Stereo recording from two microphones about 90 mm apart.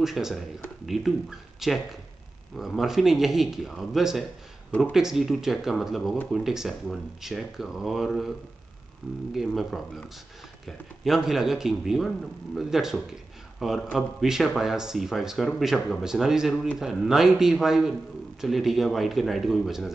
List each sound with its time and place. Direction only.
0.0 s speech: 5° right (ahead or behind)
4.6 s speech: 15° left (ahead or behind)
4.9 s speech: 5° right (ahead or behind)
9.3 s speech: centre (ahead or behind)